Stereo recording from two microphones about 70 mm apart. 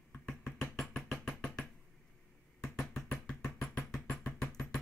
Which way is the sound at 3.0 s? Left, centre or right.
Centre.